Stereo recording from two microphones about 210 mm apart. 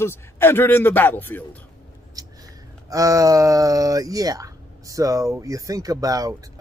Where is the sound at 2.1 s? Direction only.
15° right (ahead or behind).